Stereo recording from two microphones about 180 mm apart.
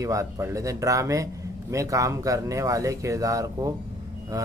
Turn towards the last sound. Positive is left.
turn(degrees=-20)  # may be behind; listen again after turning